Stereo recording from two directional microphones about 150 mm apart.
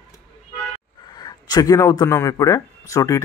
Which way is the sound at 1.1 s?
25° left (ahead or behind).